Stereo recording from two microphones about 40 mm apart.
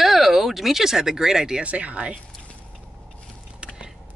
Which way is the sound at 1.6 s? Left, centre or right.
Right.